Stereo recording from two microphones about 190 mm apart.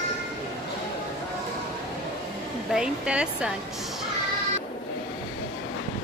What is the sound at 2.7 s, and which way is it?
Speech, 5° right (ahead or behind).